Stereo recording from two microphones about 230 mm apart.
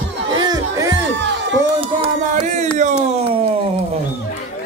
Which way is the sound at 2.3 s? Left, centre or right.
Right.